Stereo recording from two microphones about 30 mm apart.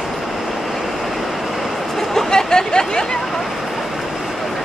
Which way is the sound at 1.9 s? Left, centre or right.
Centre.